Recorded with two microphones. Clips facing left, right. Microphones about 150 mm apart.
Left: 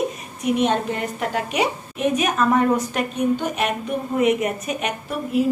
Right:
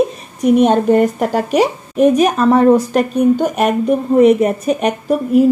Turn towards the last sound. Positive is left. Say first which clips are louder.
# right 10 dB
turn(degrees=-45)  # may be behind; listen again after turning